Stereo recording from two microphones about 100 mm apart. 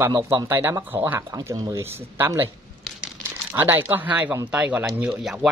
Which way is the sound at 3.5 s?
20° right (ahead or behind).